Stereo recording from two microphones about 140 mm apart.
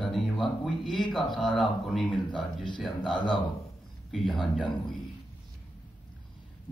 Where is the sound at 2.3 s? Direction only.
35° left (ahead or behind).